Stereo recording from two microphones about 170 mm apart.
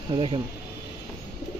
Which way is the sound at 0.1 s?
30° right (ahead or behind).